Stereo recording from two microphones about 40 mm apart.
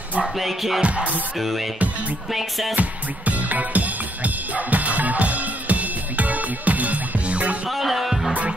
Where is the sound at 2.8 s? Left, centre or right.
Right.